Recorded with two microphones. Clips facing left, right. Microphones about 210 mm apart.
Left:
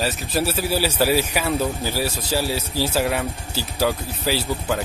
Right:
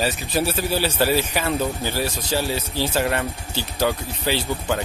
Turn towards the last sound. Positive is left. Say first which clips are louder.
# even
turn(degrees=5)  # may be behind; listen again after turning